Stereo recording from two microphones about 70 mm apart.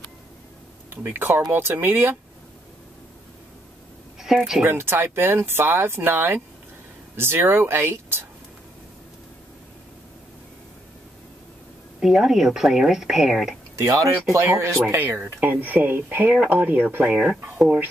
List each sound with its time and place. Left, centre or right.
0.8 s speech: right
4.2 s speech: centre
4.6 s speech: right
12.0 s speech: centre
13.8 s speech: right
14.5 s speech: right
15.0 s speech: right; by 17.7 s centre